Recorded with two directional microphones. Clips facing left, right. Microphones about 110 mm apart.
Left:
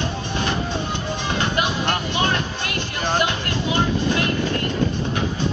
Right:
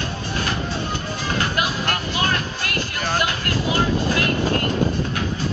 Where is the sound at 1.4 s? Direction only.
25° left (ahead or behind).